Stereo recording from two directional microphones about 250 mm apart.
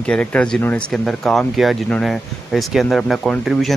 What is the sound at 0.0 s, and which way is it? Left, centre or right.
Speech, centre.